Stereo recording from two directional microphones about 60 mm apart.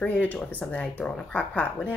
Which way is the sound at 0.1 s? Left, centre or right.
Left.